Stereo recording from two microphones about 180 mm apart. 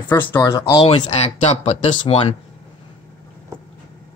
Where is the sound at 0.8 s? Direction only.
35° left (ahead or behind).